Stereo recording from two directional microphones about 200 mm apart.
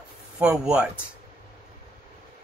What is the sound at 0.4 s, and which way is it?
Speech, 5° right (ahead or behind).